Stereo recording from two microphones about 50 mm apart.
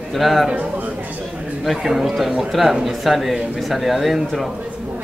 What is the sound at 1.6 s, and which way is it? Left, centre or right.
Speech, centre.